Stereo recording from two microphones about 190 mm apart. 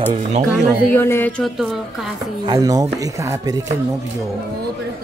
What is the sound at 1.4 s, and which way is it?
Speech, centre (ahead or behind).